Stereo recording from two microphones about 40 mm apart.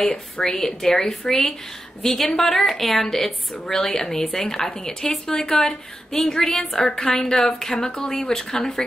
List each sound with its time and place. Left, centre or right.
0.0 s a woman's voice: centre